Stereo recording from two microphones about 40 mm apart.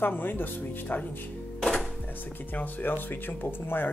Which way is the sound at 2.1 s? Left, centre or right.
Left.